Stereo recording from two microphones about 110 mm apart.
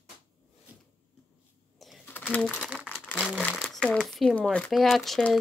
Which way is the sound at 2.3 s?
15° left (ahead or behind).